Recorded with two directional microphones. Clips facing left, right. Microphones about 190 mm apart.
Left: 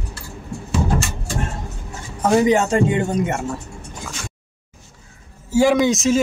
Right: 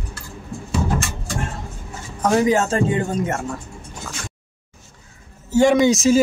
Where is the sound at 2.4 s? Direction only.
20° left (ahead or behind).